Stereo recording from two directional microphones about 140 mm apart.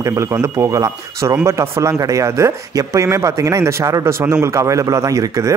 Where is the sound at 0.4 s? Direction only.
25° right (ahead or behind).